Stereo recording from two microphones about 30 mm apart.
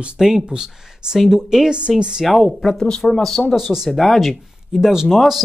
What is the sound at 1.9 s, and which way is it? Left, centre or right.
Speech, right.